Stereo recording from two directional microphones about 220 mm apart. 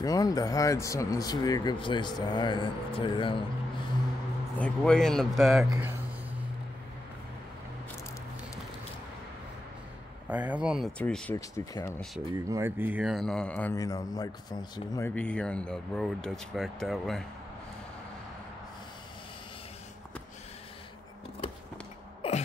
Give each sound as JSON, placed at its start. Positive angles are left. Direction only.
{"t": 0.0, "sound": "speech", "side_deg": 15}
{"t": 4.6, "sound": "a man's voice", "side_deg": 5}
{"t": 5.7, "sound": "speech", "side_deg": -10}
{"t": 10.2, "sound": "a man's voice", "side_deg": -5}
{"t": 12.4, "sound": "a man's voice", "side_deg": -15}